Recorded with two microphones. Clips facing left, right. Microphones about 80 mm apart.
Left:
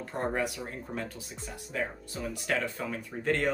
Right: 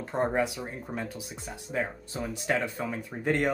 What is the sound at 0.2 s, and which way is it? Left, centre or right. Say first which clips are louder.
Speech: right 4 dB; right.